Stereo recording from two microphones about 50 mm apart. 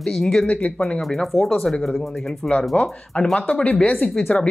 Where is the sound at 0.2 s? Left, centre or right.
Centre.